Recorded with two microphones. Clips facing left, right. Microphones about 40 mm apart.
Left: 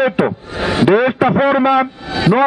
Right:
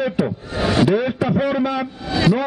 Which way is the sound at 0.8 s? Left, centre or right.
Left.